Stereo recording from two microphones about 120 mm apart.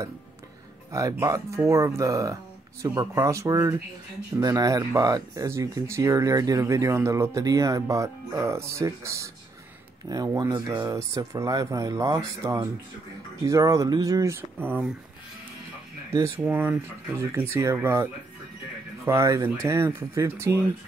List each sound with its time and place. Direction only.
1.2 s speech: 25° right (ahead or behind)
16.4 s speech: 20° right (ahead or behind)